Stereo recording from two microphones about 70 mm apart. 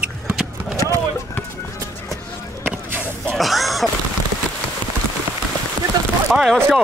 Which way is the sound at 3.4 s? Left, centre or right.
Centre.